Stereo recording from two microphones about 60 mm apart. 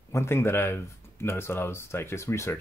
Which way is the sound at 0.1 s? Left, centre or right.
Left.